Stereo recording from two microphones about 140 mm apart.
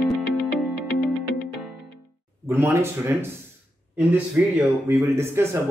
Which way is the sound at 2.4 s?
20° right (ahead or behind).